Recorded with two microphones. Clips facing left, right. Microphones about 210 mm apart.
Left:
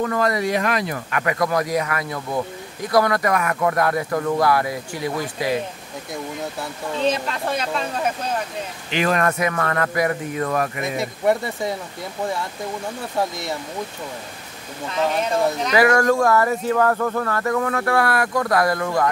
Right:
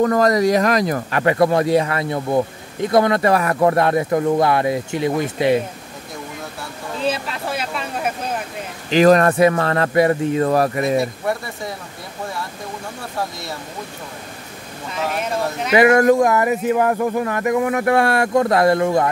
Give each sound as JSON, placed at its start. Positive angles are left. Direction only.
{"t": 0.0, "sound": "speech", "side_deg": -40}
{"t": 7.0, "sound": "speech", "side_deg": -5}
{"t": 8.9, "sound": "speech", "side_deg": -35}
{"t": 10.8, "sound": "speech", "side_deg": 20}
{"t": 15.7, "sound": "speech", "side_deg": -20}